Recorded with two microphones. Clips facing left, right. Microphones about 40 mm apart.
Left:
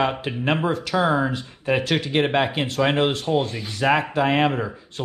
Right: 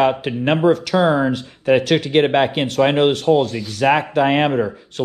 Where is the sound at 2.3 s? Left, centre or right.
Right.